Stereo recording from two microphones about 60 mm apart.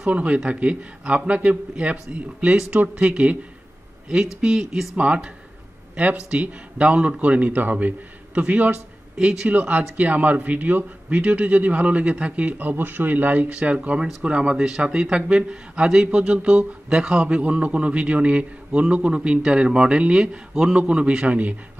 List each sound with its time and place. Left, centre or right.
0.1 s a man's voice: right
4.4 s speech: centre
4.9 s a man's voice: right
6.3 s a man's voice: right
9.1 s a man's voice: centre
9.5 s a man's voice: right
13.5 s a man's voice: centre